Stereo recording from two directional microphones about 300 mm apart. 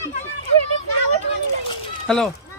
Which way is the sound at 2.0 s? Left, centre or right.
Centre.